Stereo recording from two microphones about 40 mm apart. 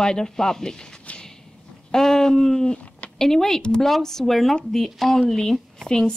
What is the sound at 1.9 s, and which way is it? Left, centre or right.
Speech, centre.